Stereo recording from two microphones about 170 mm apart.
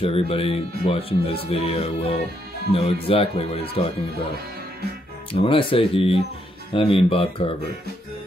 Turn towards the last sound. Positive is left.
turn(degrees=30)  # may be behind; listen again after turning